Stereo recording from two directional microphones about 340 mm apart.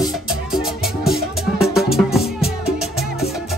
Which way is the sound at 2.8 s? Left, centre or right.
Centre.